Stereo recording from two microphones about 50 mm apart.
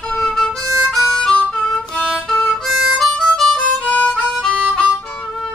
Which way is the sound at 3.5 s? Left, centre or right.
Left.